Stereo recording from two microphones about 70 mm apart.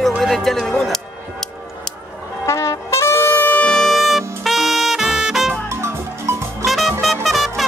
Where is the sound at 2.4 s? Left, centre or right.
Left.